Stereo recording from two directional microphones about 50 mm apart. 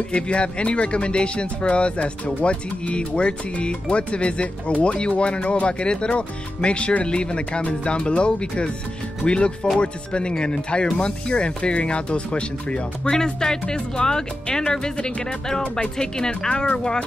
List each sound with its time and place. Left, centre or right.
0.1 s speech: left